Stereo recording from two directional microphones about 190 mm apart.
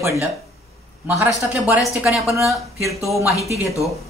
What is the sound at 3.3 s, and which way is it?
Speech, 15° left (ahead or behind).